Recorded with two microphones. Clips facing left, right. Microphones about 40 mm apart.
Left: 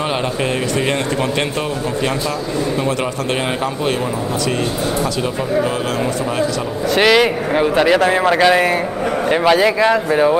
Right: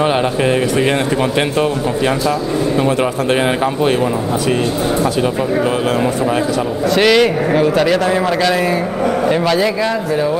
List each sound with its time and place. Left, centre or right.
7.0 s a man's voice: centre
9.6 s speech: left